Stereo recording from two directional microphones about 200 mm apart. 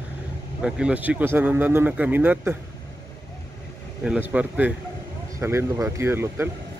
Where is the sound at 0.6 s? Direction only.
5° right (ahead or behind).